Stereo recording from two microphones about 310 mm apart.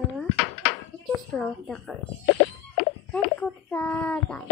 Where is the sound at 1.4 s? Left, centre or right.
Centre.